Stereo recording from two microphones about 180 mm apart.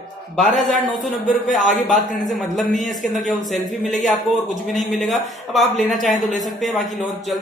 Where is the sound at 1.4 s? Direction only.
45° left (ahead or behind).